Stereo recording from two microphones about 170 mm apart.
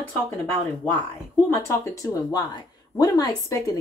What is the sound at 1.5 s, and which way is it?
Speech, 20° left (ahead or behind).